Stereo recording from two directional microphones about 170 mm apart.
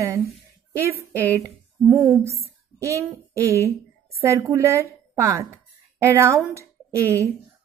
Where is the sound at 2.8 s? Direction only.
15° right (ahead or behind).